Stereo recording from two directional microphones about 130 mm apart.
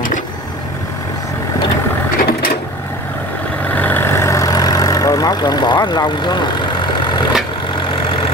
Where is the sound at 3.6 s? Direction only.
15° left (ahead or behind).